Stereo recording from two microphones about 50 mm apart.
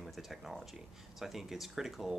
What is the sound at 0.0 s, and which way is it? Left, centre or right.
Speech, centre.